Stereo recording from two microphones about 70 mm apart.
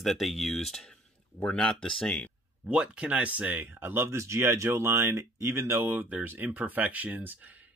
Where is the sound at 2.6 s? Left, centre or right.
Centre.